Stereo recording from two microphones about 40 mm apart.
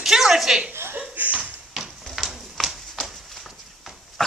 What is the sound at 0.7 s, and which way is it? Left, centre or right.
Chuckle, right.